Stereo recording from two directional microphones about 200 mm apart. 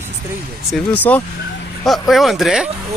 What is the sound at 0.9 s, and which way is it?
Speech, 10° left (ahead or behind).